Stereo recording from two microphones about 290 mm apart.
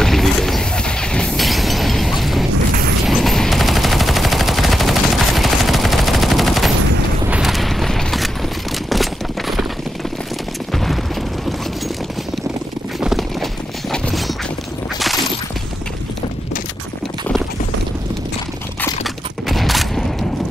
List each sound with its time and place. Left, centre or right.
0.0 s train: centre
3.1 s gunshot: centre
7.2 s mechanisms: centre
8.9 s a sound: centre
13.0 s clip-clop: centre
18.8 s a sound: centre